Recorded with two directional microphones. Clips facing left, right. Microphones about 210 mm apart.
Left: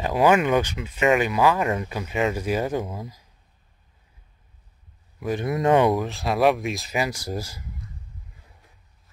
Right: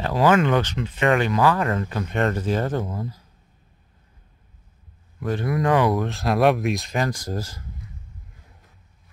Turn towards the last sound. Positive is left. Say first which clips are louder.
# right 1 dB
turn(degrees=10)  # may be behind; listen again after turning